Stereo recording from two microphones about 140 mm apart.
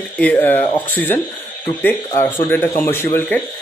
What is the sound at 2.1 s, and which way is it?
Speech, 20° left (ahead or behind).